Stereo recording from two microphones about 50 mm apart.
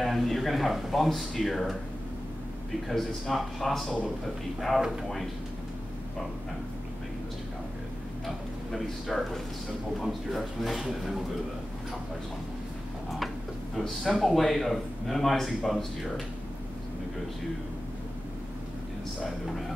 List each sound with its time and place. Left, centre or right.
0.0 s a man's voice: centre
2.9 s a man's voice: centre
8.7 s a man's voice: centre
13.7 s a man's voice: centre